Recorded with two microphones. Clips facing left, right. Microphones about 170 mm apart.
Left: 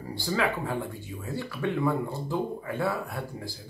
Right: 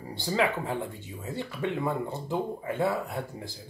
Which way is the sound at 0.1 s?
20° right (ahead or behind).